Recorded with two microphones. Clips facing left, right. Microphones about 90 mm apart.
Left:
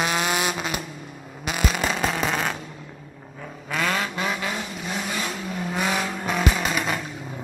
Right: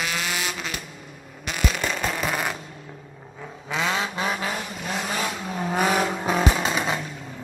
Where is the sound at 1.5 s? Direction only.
5° left (ahead or behind).